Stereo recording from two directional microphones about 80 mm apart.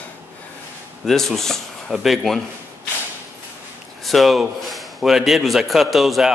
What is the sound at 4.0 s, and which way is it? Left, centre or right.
Speech, centre.